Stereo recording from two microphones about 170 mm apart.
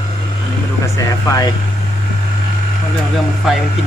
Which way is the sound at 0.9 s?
20° left (ahead or behind).